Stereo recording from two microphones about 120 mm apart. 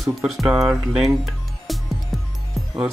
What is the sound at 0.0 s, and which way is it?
Speech, 5° right (ahead or behind).